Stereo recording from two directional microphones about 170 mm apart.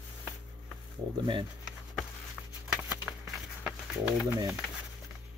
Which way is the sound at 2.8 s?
Centre (ahead or behind).